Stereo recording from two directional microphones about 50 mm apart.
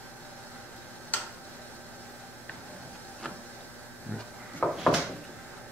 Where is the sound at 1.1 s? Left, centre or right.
Left.